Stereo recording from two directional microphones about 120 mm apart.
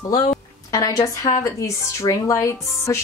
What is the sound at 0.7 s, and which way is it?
A woman's voice, 30° left (ahead or behind).